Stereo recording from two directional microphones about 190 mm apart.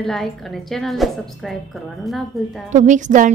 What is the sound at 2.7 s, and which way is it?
Speech, 40° right (ahead or behind).